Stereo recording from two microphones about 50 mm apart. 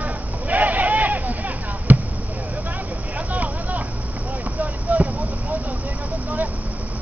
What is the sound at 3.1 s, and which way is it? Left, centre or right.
Vehicle, right.